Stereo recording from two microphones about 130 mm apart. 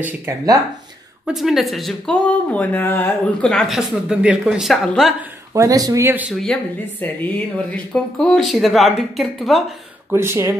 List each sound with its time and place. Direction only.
0.0 s speech: 20° right (ahead or behind)
1.2 s speech: centre (ahead or behind)
5.5 s speech: 25° right (ahead or behind)
6.0 s speech: 15° right (ahead or behind)
6.4 s speech: 10° left (ahead or behind)
10.1 s speech: 20° right (ahead or behind)